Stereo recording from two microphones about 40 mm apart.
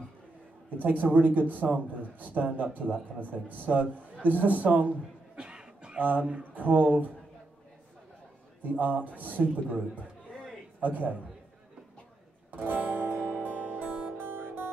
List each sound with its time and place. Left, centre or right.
0.7 s a man's voice: right
5.3 s a sound: right
5.9 s a man's voice: right
8.6 s a man's voice: right
12.5 s music: right
14.1 s music: right